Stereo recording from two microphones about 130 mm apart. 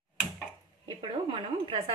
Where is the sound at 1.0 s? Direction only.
40° right (ahead or behind).